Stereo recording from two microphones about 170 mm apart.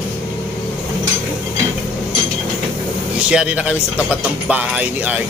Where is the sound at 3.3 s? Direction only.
5° right (ahead or behind).